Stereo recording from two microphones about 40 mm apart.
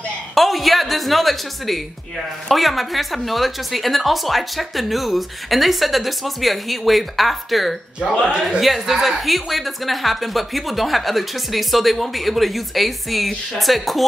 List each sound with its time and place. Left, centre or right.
0.3 s a woman's voice: centre
8.0 s a man's voice: centre
8.5 s a woman's voice: centre